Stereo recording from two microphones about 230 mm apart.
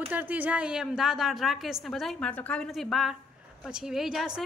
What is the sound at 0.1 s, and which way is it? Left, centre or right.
A woman's voice, centre.